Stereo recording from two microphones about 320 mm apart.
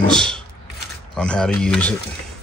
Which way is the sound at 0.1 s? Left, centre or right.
Centre.